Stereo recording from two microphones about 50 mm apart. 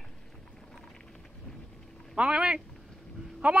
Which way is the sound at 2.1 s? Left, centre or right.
Right.